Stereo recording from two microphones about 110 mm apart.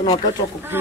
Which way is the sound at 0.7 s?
20° right (ahead or behind).